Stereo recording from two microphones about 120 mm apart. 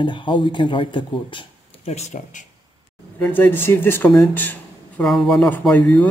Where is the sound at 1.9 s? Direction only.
70° left (ahead or behind).